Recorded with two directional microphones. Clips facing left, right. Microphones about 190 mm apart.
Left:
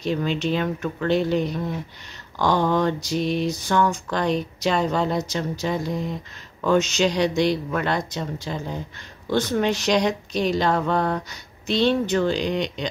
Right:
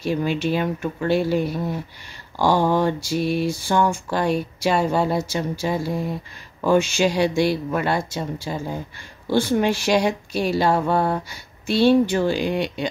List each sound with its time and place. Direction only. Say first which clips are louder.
0.0 s mantra: right 1 dB; 10° right (ahead or behind)